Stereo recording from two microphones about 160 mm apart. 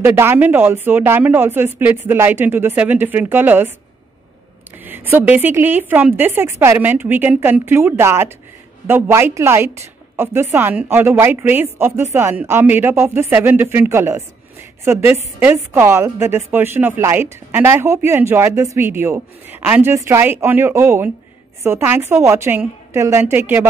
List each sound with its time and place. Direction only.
0.0 s a woman's voice: 15° right (ahead or behind)
4.8 s a woman's voice: 15° right (ahead or behind)